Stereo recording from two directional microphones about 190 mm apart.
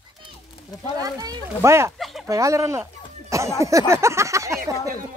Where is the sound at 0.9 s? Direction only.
20° right (ahead or behind).